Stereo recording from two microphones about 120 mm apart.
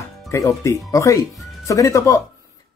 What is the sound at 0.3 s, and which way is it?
Speech, 25° left (ahead or behind).